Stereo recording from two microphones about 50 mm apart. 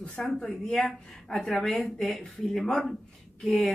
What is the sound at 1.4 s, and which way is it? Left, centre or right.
Speech, centre.